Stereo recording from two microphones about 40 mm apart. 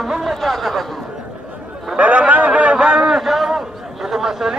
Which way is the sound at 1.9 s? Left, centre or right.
Right.